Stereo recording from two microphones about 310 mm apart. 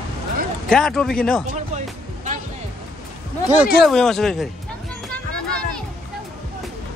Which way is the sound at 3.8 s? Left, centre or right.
Centre.